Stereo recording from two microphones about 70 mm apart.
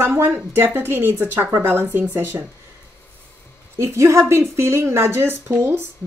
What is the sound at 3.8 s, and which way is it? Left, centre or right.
A woman's voice, right.